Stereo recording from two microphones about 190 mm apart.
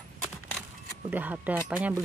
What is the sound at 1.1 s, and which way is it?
Speech, 10° right (ahead or behind).